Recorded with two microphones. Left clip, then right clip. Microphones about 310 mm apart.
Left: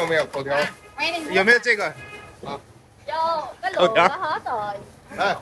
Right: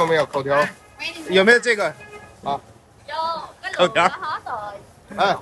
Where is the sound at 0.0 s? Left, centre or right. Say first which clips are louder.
Right 3 dB; right.